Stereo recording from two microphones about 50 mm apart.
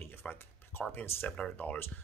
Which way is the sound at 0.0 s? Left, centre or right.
Left.